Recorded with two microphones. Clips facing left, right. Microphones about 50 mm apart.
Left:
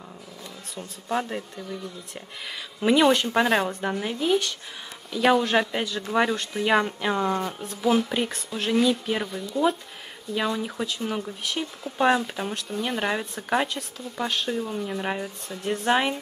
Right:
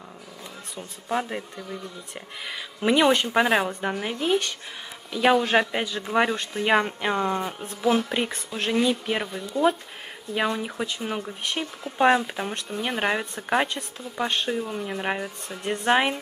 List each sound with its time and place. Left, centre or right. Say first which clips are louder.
0.7 s speech: even; centre
2.4 s speech: left 1 dB; centre
4.0 s speech: left 1 dB; centre